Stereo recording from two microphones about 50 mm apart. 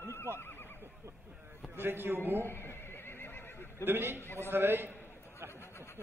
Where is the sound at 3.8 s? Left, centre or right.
Right.